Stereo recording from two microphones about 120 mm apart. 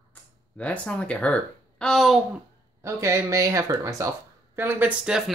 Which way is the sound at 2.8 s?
25° right (ahead or behind).